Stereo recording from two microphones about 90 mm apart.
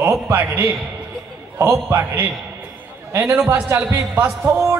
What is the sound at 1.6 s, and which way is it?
Speech, 30° right (ahead or behind).